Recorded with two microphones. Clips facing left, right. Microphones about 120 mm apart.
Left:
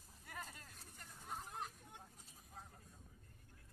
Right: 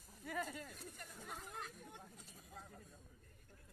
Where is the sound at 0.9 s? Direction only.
90° right.